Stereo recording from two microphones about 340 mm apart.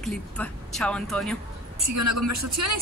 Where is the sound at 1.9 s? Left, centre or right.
Right.